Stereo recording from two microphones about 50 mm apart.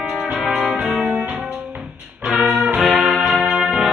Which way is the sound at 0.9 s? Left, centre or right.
Centre.